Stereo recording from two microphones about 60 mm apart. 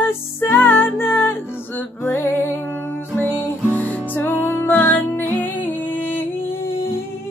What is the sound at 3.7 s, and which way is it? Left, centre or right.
Music, left.